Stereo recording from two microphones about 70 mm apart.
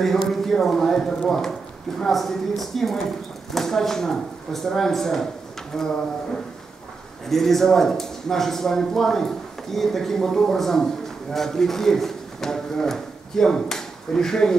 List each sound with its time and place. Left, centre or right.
0.0 s speech: centre
7.2 s a man's voice: centre